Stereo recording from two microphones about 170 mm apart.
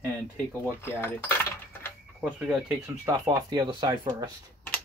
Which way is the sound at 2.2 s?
5° right (ahead or behind).